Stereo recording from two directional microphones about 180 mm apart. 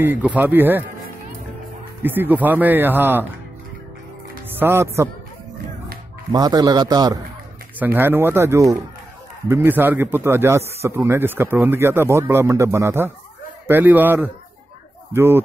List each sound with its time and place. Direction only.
0.0 s speech: 10° right (ahead or behind)
2.0 s speech: 10° right (ahead or behind)
4.5 s speech: 10° right (ahead or behind)
6.3 s a man's voice: 20° right (ahead or behind)
7.8 s speech: 10° right (ahead or behind)